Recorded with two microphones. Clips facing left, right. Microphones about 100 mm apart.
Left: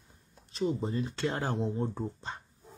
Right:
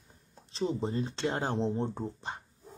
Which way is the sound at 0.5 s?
30° right (ahead or behind).